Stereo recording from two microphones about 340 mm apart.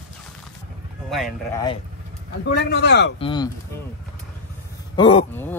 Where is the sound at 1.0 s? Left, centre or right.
Centre.